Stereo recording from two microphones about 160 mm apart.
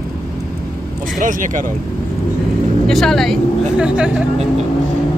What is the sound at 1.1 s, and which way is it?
Speech, 55° right (ahead or behind).